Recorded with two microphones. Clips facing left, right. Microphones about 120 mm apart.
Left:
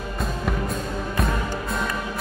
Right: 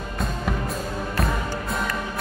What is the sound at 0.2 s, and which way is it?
Music, centre (ahead or behind).